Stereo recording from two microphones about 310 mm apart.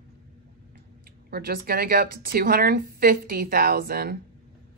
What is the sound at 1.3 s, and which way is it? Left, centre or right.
A woman's voice, right.